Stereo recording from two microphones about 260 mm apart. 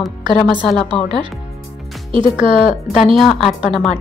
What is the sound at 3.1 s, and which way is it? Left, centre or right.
Speech, centre.